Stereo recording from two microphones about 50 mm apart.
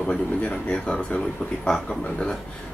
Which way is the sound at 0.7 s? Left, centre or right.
Left.